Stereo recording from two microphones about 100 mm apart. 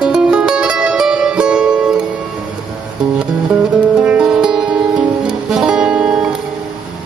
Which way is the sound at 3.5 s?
10° right (ahead or behind).